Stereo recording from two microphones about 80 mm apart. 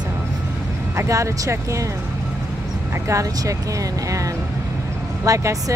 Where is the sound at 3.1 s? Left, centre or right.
Right.